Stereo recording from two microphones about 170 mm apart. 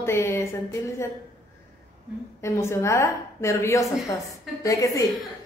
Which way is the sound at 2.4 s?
15° left (ahead or behind).